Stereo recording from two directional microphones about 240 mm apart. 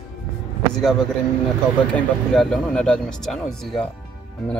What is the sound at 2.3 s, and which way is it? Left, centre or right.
A man's voice, centre.